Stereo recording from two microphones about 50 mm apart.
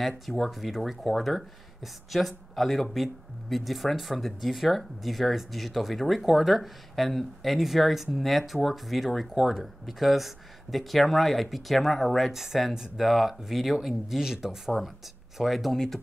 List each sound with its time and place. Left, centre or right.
0.3 s speech: centre